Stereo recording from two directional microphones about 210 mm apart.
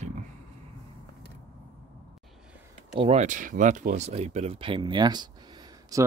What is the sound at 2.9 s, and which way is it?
Speech, 30° right (ahead or behind).